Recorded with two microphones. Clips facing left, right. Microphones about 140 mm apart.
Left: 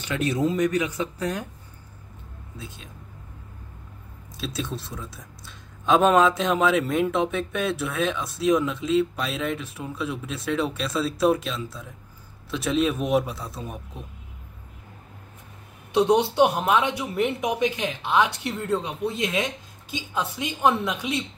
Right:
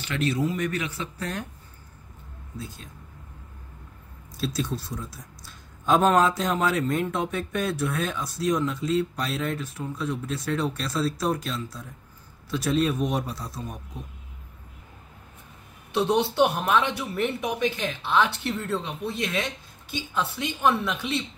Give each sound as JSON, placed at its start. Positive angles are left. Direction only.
{"t": 0.0, "sound": "speech", "side_deg": 15}
{"t": 2.6, "sound": "speech", "side_deg": 0}
{"t": 4.6, "sound": "speech", "side_deg": 0}
{"t": 15.9, "sound": "speech", "side_deg": 20}